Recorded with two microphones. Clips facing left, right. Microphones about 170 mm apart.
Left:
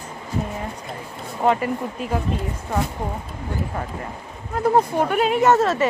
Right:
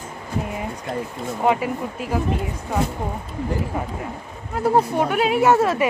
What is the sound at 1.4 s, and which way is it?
Speech, 5° right (ahead or behind).